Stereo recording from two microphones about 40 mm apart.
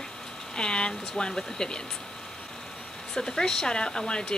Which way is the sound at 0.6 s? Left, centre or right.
Left.